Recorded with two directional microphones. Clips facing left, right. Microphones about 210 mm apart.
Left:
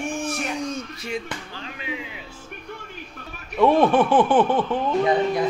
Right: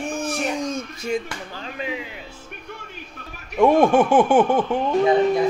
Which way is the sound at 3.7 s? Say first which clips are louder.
Right 2 dB; 45° right (ahead or behind).